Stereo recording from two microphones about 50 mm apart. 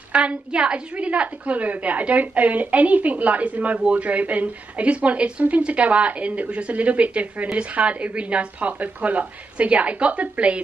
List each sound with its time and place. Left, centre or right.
0.1 s a woman's voice: right